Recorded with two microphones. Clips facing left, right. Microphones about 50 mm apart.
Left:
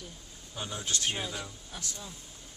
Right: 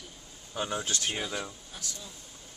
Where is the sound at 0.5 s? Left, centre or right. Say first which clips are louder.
Right 5 dB; right.